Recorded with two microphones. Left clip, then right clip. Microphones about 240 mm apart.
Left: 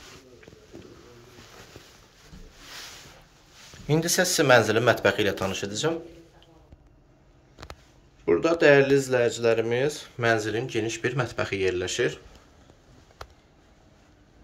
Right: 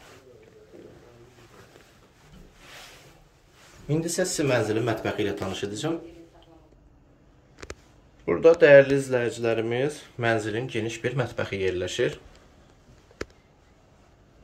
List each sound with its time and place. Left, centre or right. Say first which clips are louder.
3.9 s speech: left 3 dB; centre
8.3 s speech: right 4 dB; centre